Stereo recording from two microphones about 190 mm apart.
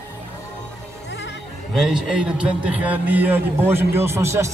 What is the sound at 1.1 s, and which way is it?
Music, 65° left (ahead or behind).